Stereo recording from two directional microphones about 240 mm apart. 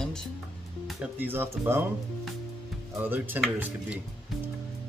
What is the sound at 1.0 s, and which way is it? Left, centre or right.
Speech, centre.